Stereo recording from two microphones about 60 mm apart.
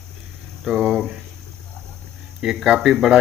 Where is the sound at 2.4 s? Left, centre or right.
Centre.